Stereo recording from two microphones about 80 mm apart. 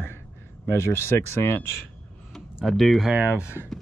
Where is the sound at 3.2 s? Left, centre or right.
Centre.